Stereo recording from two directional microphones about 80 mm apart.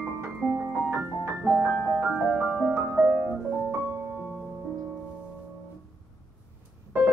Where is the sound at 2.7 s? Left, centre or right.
Right.